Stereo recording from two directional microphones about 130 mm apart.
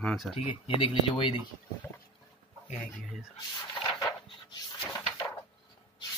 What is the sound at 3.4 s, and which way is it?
Dog, 30° left (ahead or behind).